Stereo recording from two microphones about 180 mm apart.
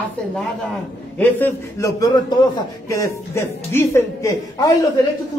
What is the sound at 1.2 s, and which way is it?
A woman's voice, 15° left (ahead or behind).